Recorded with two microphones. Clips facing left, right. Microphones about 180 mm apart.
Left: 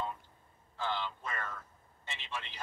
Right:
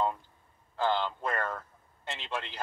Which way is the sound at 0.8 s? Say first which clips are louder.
Right 8 dB; 90° right.